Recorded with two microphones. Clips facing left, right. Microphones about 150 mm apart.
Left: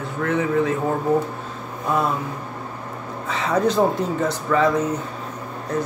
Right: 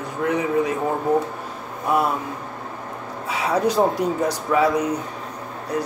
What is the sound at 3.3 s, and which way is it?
Speech, 10° right (ahead or behind).